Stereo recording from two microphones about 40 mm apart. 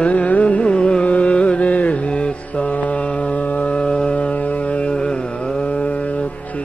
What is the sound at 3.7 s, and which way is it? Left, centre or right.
Music, left.